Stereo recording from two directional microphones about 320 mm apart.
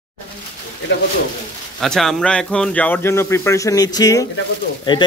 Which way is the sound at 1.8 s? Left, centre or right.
Centre.